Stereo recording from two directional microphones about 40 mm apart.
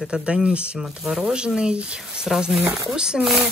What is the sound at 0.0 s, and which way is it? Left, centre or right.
Speech, right.